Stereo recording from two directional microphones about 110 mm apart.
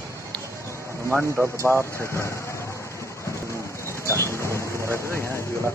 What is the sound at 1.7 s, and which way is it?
Speech, 15° left (ahead or behind).